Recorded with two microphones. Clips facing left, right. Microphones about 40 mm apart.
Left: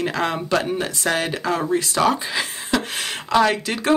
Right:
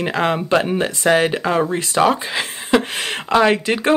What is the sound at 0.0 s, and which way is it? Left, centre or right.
Speech, right.